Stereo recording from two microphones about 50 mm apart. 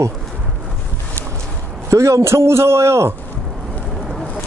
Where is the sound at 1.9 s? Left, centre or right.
Right.